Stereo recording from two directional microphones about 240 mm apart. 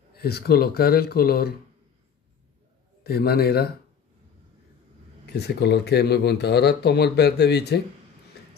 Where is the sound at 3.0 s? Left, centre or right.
Left.